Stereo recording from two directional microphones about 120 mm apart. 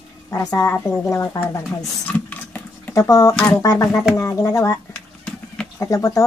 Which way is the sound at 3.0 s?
25° left (ahead or behind).